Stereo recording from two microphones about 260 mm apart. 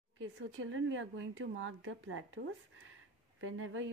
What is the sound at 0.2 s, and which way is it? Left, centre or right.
Speech, right.